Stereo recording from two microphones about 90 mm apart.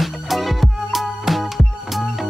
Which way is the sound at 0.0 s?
Centre (ahead or behind).